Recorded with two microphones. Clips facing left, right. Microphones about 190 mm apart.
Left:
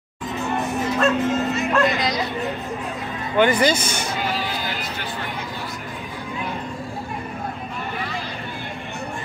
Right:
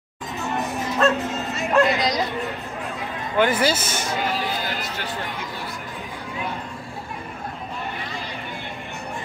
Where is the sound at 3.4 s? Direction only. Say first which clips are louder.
Left 2 dB; 5° right (ahead or behind).